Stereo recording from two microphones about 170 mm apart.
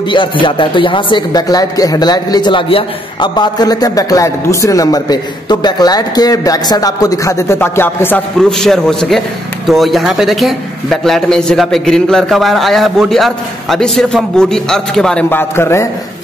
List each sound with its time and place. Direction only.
0.1 s a man's voice: 30° left (ahead or behind)